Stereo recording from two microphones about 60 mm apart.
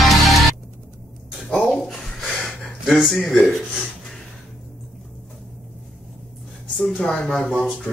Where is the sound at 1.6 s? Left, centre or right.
Centre.